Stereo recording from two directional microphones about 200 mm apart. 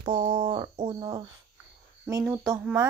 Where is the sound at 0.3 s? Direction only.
25° right (ahead or behind).